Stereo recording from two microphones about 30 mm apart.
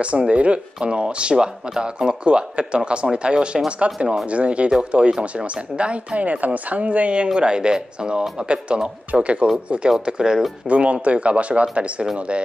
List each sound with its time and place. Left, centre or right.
0.0 s speech: right
0.7 s speech: right
3.8 s speech: right
6.2 s speech: right
7.3 s speech: right
9.8 s speech: right
10.7 s speech: right